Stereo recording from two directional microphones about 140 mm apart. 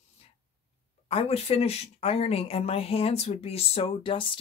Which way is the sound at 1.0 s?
45° left (ahead or behind).